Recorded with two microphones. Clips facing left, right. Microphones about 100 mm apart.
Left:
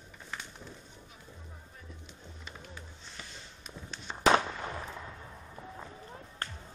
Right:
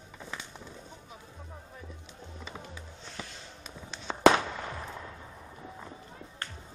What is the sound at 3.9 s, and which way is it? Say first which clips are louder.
Fireworks: right 10 dB; 90° right.